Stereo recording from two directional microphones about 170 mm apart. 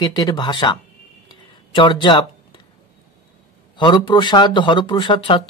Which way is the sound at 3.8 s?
25° left (ahead or behind).